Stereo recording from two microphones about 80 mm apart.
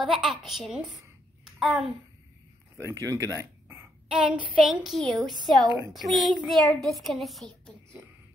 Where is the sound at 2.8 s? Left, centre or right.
Right.